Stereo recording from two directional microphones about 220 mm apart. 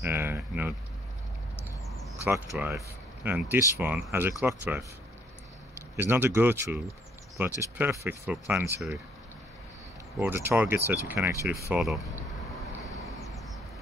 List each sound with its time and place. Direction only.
0.0 s speech: 10° right (ahead or behind)
2.5 s speech: 10° right (ahead or behind)
5.9 s speech: 10° right (ahead or behind)
10.1 s speech: 10° right (ahead or behind)
13.0 s a sound: centre (ahead or behind)